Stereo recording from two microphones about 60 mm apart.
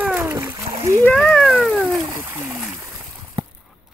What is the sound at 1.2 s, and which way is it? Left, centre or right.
Cat, centre.